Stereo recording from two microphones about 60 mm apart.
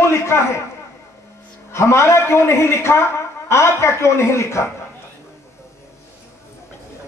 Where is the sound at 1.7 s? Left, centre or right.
Left.